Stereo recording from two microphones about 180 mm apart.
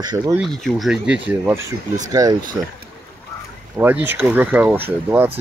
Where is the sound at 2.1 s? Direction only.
20° right (ahead or behind).